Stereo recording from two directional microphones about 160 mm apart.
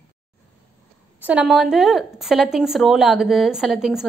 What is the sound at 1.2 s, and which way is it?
A woman's voice, 5° right (ahead or behind).